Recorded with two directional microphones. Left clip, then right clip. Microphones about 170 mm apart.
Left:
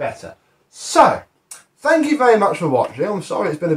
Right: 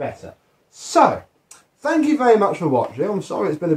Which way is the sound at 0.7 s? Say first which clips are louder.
Left 3 dB; 35° right (ahead or behind).